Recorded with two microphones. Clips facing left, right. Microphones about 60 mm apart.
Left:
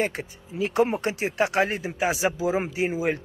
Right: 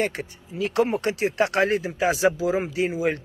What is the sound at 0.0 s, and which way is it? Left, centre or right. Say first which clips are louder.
Speech: right 1 dB; centre.